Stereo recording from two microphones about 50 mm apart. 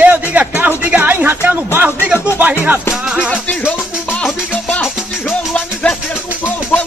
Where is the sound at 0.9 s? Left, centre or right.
Right.